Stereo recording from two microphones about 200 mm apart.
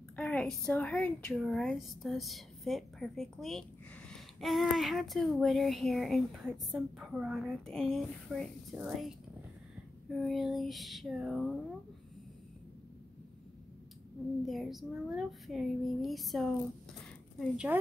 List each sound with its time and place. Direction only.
0.1 s a woman's voice: 5° left (ahead or behind)
10.1 s a woman's voice: centre (ahead or behind)
14.4 s a woman's voice: centre (ahead or behind)